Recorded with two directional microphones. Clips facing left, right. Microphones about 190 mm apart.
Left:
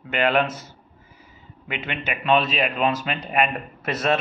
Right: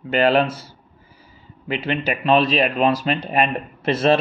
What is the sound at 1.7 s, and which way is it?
Speech, 35° right (ahead or behind).